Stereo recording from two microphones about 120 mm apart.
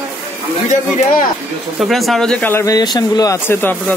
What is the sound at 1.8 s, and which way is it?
Speech, centre (ahead or behind).